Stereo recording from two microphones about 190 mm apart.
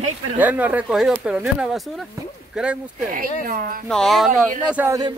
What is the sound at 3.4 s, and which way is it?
Speech, 50° right (ahead or behind).